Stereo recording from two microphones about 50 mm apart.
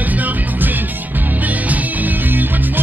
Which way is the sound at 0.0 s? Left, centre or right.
Right.